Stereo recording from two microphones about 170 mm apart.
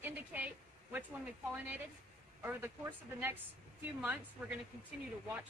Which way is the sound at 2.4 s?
15° right (ahead or behind).